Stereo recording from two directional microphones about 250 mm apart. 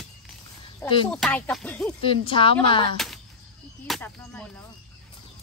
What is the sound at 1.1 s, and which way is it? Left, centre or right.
Speech, centre.